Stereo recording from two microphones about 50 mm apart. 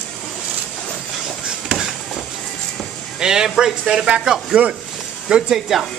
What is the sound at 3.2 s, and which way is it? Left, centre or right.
Snake, centre.